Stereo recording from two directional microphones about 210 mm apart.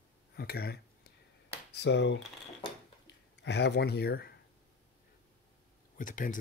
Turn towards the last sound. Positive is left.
turn(degrees=40)  # may be behind; listen again after turning